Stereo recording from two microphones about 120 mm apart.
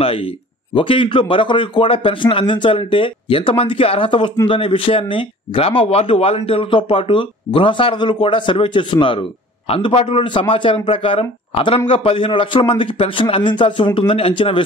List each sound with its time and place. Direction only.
0.0 s speech: 50° left (ahead or behind)